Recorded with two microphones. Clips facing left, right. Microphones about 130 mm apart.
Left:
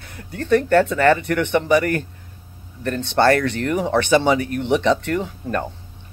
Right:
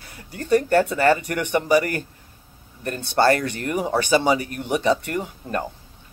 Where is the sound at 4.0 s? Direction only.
35° right (ahead or behind).